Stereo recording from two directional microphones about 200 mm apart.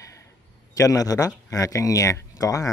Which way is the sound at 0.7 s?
15° left (ahead or behind).